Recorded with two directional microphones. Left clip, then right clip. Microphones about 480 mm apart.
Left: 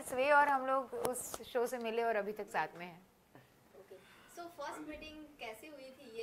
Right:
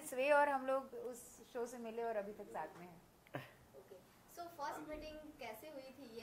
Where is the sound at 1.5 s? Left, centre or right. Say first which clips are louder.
Left 9 dB; left.